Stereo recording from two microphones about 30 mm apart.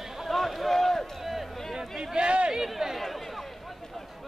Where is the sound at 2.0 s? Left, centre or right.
Right.